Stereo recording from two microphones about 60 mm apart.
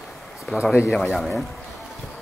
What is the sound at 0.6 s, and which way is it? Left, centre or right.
Speech, centre.